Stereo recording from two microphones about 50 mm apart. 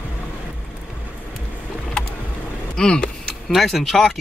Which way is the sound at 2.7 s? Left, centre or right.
Centre.